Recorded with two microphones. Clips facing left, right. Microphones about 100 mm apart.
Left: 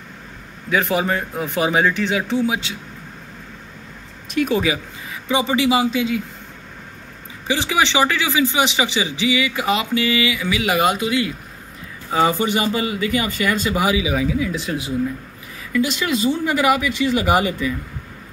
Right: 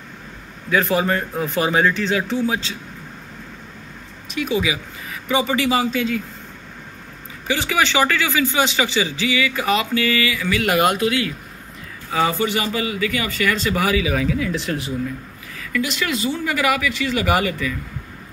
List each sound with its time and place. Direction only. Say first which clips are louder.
0.7 s speech: right 1 dB; 20° left (ahead or behind)
4.4 s speech: left 3 dB; 45° left (ahead or behind)
5.3 s speech: left 1 dB; 20° left (ahead or behind)
7.4 s speech: left 1 dB; 25° left (ahead or behind)
10.6 s speech: right 1 dB; centre (ahead or behind)
12.1 s speech: left 2 dB; 25° left (ahead or behind)
14.5 s speech: right 1 dB; centre (ahead or behind)
15.7 s speech: left 3 dB; 20° left (ahead or behind)